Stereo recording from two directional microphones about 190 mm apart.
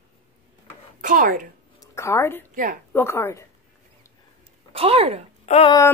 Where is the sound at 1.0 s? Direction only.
45° right (ahead or behind).